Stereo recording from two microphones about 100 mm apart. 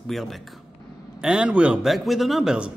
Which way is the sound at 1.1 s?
10° right (ahead or behind).